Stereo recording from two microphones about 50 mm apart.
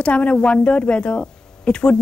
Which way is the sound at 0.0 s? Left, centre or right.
Left.